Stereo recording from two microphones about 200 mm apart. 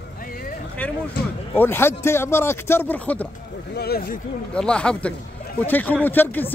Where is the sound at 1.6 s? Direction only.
10° left (ahead or behind).